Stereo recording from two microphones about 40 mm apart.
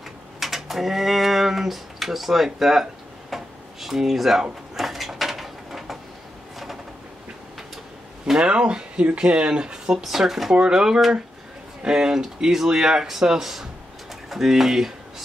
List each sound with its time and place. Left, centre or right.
0.4 s a sound: centre
8.5 s speech: right
10.0 s speech: centre